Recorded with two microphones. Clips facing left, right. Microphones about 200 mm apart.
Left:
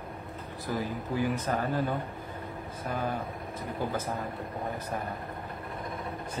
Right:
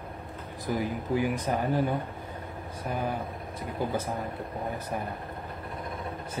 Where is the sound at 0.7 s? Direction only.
15° right (ahead or behind).